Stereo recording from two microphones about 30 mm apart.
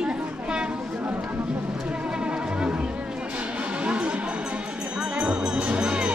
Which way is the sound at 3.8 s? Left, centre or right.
Right.